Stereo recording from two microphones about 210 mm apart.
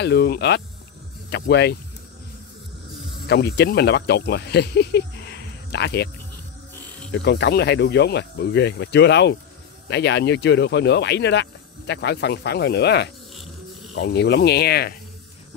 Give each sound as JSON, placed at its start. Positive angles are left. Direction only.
{"t": 0.0, "sound": "speech", "side_deg": 55}
{"t": 3.3, "sound": "speech", "side_deg": 55}
{"t": 7.1, "sound": "speech", "side_deg": 55}